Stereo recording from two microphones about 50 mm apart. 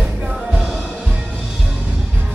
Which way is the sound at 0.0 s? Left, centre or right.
Centre.